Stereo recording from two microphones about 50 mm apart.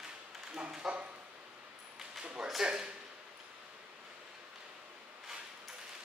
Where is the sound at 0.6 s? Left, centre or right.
Centre.